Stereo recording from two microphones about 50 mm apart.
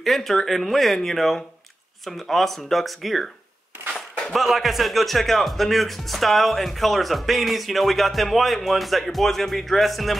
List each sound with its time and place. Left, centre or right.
0.0 s speech: centre
4.3 s speech: centre